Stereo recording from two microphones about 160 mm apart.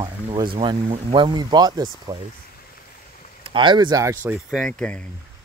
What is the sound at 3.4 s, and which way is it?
Speech, 30° right (ahead or behind).